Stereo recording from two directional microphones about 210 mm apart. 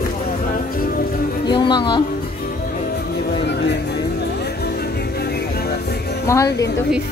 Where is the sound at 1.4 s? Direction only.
20° left (ahead or behind).